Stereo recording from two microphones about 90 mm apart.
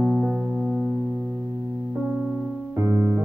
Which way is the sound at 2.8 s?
35° right (ahead or behind).